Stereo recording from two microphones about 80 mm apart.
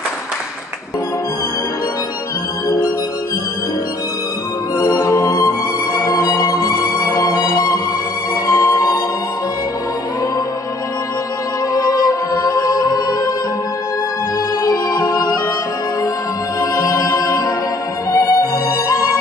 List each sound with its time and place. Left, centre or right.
4.7 s music: left
11.7 s music: left
14.6 s music: left
16.7 s music: left